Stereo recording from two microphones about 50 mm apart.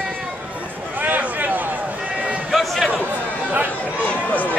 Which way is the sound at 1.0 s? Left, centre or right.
Right.